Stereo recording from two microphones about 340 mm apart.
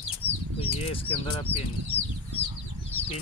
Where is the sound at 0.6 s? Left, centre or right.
Centre.